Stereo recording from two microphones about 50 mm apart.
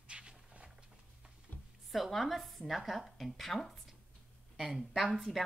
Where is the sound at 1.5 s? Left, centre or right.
Left.